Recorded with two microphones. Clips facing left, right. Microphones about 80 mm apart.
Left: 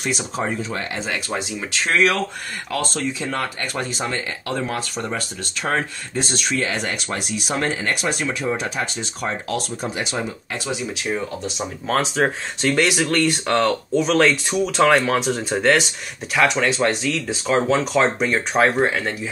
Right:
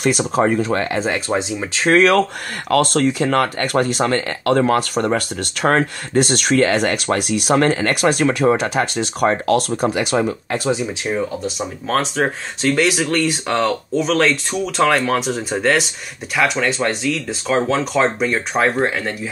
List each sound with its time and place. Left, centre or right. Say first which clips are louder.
0.0 s speech: right 8 dB; right
2.7 s speech: right 9 dB; right
11.4 s speech: right 2 dB; centre